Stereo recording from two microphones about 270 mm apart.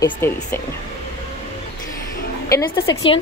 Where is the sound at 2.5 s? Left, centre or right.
Centre.